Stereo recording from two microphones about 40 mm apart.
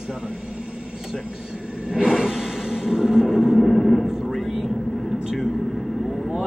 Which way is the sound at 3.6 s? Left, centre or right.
Centre.